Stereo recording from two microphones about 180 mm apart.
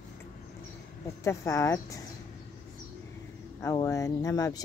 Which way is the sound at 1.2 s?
15° left (ahead or behind).